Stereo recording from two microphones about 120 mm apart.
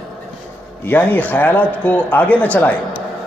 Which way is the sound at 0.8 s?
15° left (ahead or behind).